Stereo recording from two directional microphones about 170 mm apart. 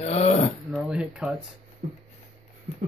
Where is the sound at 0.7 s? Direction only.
5° right (ahead or behind).